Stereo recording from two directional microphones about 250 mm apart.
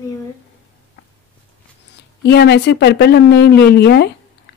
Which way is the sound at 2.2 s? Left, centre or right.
Left.